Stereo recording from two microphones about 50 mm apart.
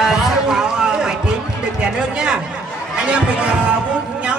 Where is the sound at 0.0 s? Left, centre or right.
Centre.